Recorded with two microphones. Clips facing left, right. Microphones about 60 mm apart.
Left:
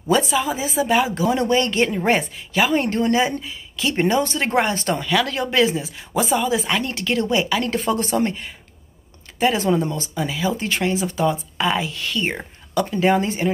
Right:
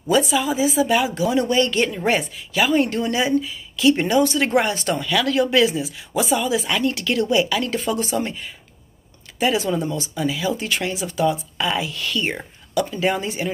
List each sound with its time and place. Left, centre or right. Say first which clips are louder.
0.1 s speech: even; left
7.6 s speech: left 1 dB; left
9.4 s speech: left 2 dB; left